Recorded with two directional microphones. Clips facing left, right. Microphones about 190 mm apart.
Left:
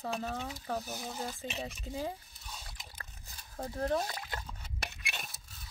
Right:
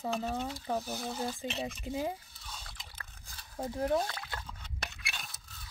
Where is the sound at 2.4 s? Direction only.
10° left (ahead or behind).